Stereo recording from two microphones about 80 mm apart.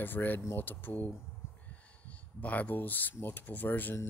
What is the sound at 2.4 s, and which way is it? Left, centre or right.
Speech, centre.